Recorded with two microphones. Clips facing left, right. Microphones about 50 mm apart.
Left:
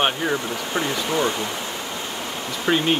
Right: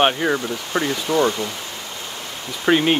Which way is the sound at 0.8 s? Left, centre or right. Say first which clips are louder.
Right 4 dB; centre.